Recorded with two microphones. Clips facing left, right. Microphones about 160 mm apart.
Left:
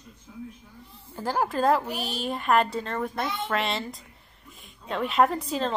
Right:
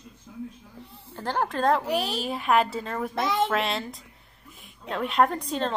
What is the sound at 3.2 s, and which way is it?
Speech, 90° right.